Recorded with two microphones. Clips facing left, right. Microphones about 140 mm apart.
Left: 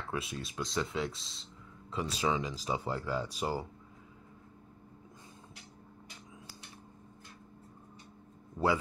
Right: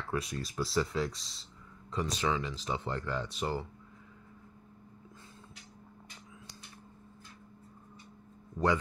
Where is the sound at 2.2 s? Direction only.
20° left (ahead or behind).